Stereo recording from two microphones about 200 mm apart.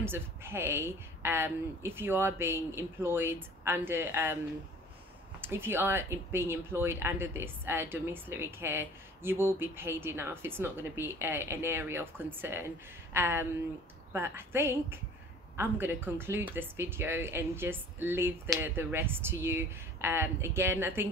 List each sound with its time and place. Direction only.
0.0 s speech: 10° right (ahead or behind)
5.4 s speech: 10° right (ahead or behind)